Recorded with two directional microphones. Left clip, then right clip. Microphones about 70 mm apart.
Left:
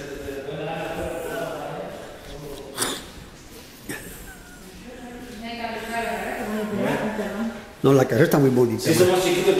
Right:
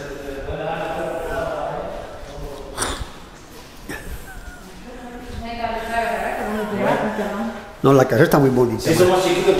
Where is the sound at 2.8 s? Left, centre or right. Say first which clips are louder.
Right 2 dB; centre.